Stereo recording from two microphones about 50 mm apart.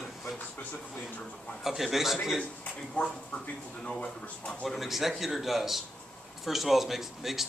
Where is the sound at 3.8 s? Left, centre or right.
Left.